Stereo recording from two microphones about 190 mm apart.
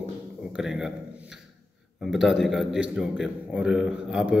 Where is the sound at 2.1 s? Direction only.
Centre (ahead or behind).